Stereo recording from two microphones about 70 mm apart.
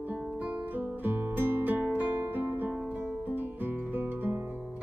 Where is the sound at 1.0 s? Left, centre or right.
Right.